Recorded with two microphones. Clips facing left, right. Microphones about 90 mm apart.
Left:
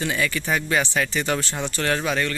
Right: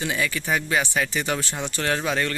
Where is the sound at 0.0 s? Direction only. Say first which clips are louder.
Left 1 dB; 10° right (ahead or behind).